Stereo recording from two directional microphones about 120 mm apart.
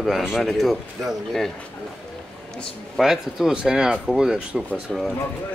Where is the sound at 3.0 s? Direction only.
Centre (ahead or behind).